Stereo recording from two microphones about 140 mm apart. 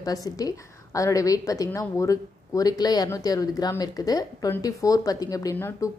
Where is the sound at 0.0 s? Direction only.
25° left (ahead or behind).